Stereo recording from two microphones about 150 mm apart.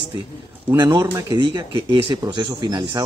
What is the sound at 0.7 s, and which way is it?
Speech, 25° right (ahead or behind).